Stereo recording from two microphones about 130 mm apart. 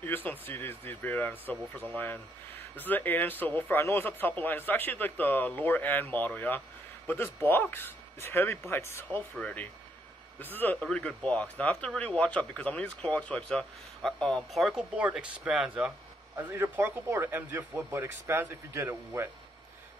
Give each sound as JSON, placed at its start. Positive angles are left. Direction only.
{"t": 0.0, "sound": "speech", "side_deg": 15}